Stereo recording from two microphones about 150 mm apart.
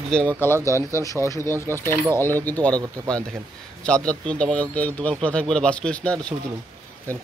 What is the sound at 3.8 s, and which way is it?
A man's voice, 5° left (ahead or behind).